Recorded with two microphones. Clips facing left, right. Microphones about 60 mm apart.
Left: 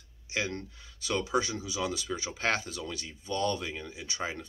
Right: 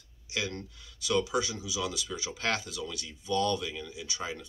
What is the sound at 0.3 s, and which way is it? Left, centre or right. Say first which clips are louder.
Speech: left 2 dB; left.